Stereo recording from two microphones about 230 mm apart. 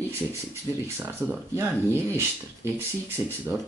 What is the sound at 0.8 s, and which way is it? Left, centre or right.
Speech, centre.